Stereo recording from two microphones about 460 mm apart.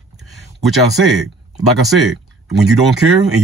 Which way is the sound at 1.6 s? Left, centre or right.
Centre.